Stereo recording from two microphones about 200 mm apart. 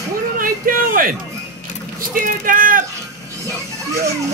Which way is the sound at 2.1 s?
45° right (ahead or behind).